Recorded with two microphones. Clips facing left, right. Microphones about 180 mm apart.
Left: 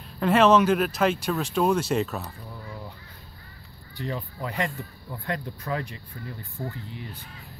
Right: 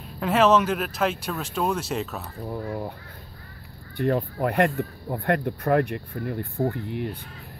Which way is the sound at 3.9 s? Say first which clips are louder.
Right 9 dB; 60° right (ahead or behind).